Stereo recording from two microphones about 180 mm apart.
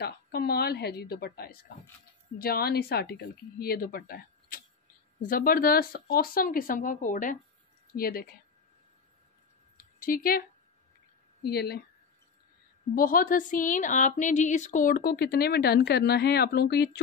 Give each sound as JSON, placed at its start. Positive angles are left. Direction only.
{"t": 0.0, "sound": "a woman's voice", "side_deg": 65}
{"t": 9.9, "sound": "speech", "side_deg": 50}
{"t": 11.4, "sound": "speech", "side_deg": 60}
{"t": 12.9, "sound": "a woman's voice", "side_deg": 50}